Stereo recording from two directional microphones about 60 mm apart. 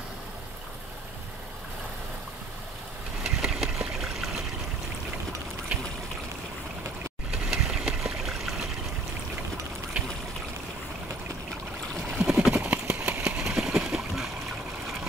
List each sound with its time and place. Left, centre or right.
3.3 s engine: centre
3.9 s water: centre
5.7 s trickle: right
7.2 s water: centre
9.9 s trickle: centre
12.1 s a sound: centre
12.6 s clip-clop: right
13.4 s a sound: centre